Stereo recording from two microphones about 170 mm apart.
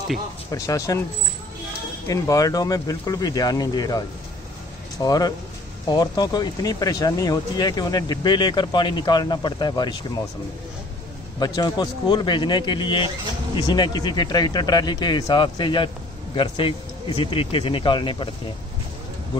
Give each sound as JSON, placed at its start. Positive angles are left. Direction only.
{"t": 0.5, "sound": "speech", "side_deg": 20}
{"t": 2.0, "sound": "speech", "side_deg": 20}
{"t": 11.3, "sound": "speech", "side_deg": 25}